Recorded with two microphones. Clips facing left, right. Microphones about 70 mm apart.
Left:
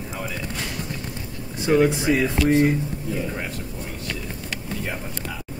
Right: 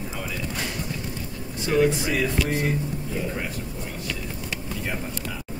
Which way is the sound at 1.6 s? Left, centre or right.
Left.